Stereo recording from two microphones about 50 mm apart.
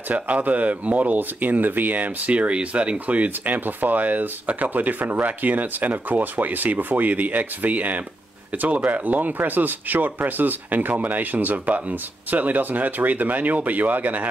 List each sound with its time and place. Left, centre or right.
0.1 s speech: right